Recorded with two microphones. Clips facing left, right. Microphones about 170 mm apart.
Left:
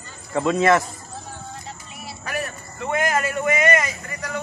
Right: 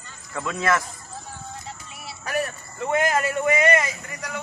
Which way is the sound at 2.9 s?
25° right (ahead or behind).